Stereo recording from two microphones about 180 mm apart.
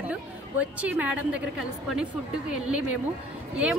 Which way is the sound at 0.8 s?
5° right (ahead or behind).